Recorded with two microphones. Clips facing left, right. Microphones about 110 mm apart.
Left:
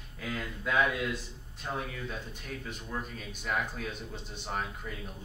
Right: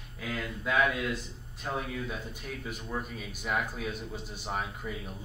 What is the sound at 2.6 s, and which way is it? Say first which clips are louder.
A man's voice: right 3 dB; 5° right (ahead or behind).